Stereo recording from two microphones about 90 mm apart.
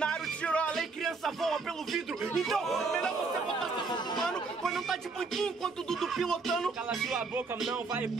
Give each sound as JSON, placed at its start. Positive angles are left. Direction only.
{"t": 0.0, "sound": "music", "side_deg": 10}
{"t": 0.7, "sound": "speech", "side_deg": 0}
{"t": 3.7, "sound": "chatter", "side_deg": 55}
{"t": 4.2, "sound": "speech", "side_deg": 5}